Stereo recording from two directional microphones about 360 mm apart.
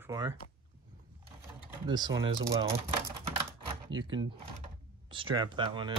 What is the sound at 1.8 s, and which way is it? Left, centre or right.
Speech, centre.